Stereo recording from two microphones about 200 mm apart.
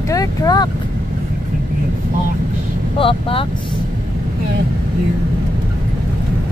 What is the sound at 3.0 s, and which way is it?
Speech, 25° left (ahead or behind).